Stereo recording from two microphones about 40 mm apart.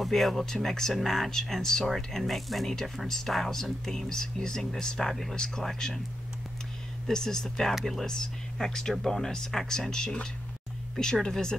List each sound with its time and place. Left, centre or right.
0.0 s speech: centre
7.1 s speech: centre
11.2 s speech: centre